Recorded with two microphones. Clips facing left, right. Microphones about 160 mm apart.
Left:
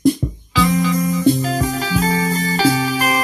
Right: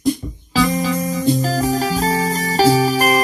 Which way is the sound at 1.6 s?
30° right (ahead or behind).